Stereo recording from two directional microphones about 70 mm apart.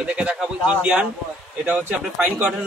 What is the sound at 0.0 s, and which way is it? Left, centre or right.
A man's voice, centre.